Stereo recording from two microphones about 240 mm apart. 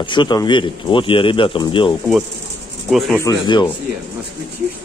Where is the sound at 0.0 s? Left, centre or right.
Centre.